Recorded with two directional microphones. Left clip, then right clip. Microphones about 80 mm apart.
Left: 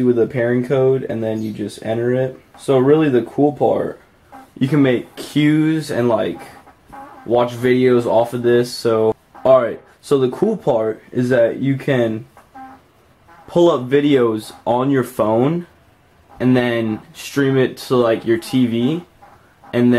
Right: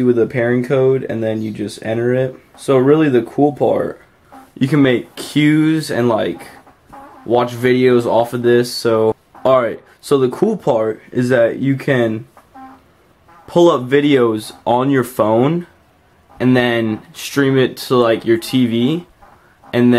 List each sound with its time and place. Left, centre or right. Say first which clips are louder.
0.0 s speech: right 2 dB; right
13.5 s speech: right 2 dB; right